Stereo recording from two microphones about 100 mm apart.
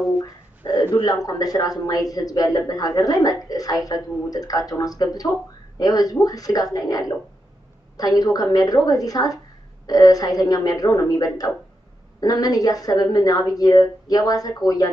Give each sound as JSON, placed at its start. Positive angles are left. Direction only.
{"t": 0.2, "sound": "speech", "side_deg": 40}
{"t": 8.2, "sound": "speech", "side_deg": 40}